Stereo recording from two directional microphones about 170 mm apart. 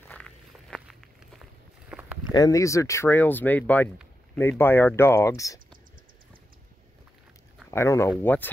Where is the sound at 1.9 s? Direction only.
10° right (ahead or behind).